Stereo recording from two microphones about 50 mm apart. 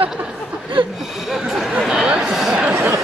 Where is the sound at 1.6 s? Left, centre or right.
Centre.